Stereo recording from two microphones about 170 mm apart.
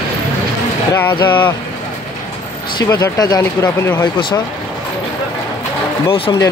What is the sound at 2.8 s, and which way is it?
Speech, 20° left (ahead or behind).